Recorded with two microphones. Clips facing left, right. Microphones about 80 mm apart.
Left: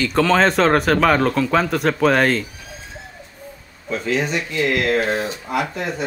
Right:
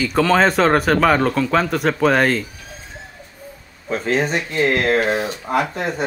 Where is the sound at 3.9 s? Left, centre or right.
Right.